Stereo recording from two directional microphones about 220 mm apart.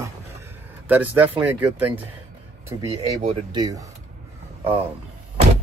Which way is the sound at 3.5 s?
20° right (ahead or behind).